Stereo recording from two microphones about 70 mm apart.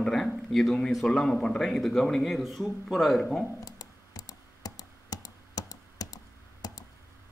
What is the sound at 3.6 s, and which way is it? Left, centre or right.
Computer keyboard, left.